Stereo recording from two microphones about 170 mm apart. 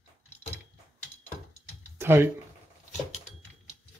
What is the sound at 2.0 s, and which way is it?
Speech, 15° right (ahead or behind).